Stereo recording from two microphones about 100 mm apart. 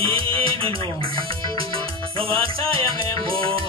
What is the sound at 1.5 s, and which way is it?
Music, 65° right (ahead or behind).